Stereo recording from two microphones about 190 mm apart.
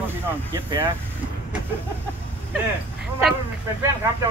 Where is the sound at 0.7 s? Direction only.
20° right (ahead or behind).